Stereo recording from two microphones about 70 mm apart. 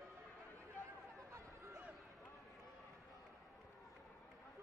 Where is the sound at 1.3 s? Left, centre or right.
Right.